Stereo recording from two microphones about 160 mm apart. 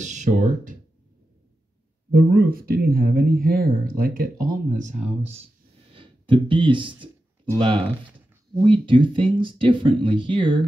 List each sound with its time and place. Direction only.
0.0 s speech: 50° right (ahead or behind)
2.1 s speech: 70° right (ahead or behind); by 4.9 s 55° right (ahead or behind)
5.0 s speech: 40° right (ahead or behind)